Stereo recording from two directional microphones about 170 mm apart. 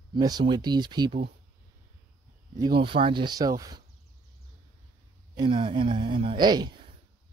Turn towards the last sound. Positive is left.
turn(degrees=-25)  # may be behind; listen again after turning